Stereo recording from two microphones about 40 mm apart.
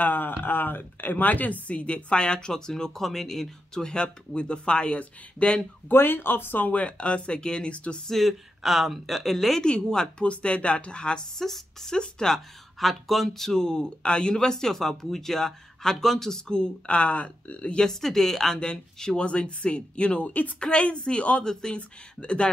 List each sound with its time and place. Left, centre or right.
0.0 s speech: left
5.9 s speech: left
6.6 s speech: left
8.1 s speech: centre
9.6 s speech: centre
11.3 s speech: centre
12.7 s speech: centre; by 17.6 s left
17.6 s speech: left
18.0 s speech: centre
18.6 s speech: centre; by 20.5 s left
21.0 s speech: left
21.5 s speech: centre
21.7 s speech: left